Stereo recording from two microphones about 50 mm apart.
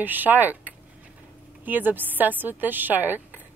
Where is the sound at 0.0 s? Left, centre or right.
Right.